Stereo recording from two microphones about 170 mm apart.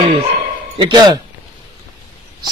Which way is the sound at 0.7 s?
25° right (ahead or behind).